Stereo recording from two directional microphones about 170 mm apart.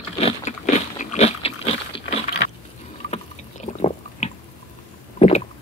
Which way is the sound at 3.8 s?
40° left (ahead or behind).